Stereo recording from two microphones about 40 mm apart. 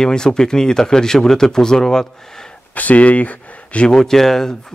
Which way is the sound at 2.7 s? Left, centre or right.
Left.